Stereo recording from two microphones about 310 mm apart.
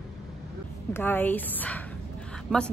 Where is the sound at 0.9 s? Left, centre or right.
Centre.